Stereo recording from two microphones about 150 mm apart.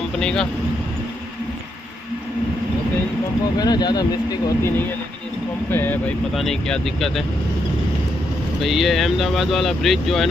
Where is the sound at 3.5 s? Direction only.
25° left (ahead or behind).